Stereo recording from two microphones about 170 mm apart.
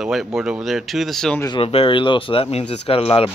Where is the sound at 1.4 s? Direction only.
30° left (ahead or behind).